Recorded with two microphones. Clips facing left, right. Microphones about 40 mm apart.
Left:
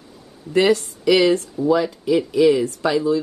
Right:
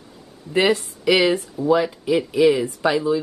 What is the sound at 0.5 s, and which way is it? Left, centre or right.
Speech, centre.